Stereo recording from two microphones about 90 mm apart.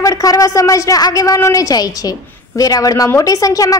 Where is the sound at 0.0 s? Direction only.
40° left (ahead or behind).